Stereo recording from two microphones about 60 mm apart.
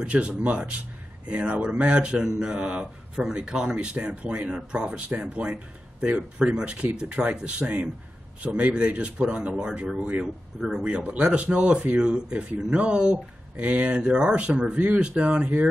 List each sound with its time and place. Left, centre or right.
0.0 s speech: centre